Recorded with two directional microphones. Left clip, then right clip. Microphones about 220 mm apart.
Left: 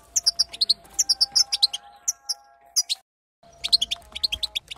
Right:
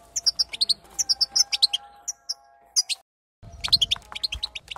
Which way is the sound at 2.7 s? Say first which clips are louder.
Even; 20° right (ahead or behind).